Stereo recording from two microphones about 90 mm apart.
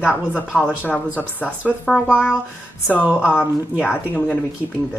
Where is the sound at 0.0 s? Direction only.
10° right (ahead or behind).